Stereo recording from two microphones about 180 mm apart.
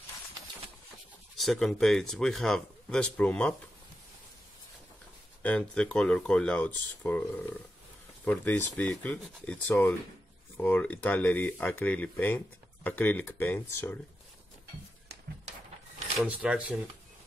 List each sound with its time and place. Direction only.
1.3 s speech: centre (ahead or behind)
5.4 s speech: 5° left (ahead or behind)
8.3 s speech: 10° left (ahead or behind)
16.2 s speech: 5° right (ahead or behind)